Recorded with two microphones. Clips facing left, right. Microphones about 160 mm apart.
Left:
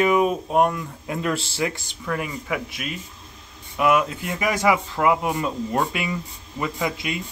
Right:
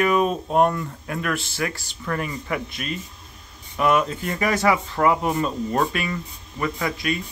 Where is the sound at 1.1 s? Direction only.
25° left (ahead or behind).